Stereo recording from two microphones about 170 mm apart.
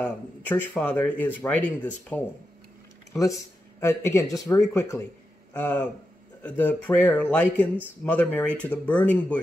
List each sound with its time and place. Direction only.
0.0 s speech: 10° left (ahead or behind)
3.1 s speech: 20° left (ahead or behind)